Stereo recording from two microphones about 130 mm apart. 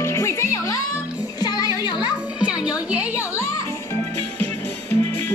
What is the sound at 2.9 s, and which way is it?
Music, 10° right (ahead or behind).